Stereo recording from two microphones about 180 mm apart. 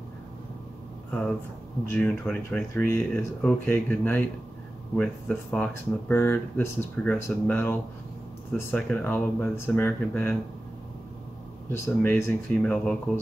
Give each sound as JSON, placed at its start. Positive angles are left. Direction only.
{"t": 1.9, "sound": "speech", "side_deg": 10}
{"t": 11.7, "sound": "speech", "side_deg": 15}